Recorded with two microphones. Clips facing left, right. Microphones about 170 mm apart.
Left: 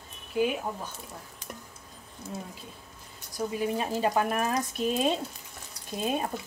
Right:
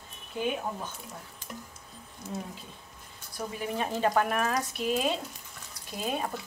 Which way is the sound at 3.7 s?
10° left (ahead or behind).